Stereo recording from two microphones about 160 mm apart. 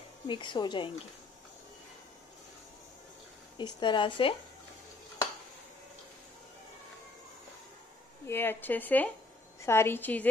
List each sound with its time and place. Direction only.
0.3 s speech: 30° left (ahead or behind)
3.5 s speech: 30° left (ahead or behind)
8.3 s a woman's voice: 15° left (ahead or behind)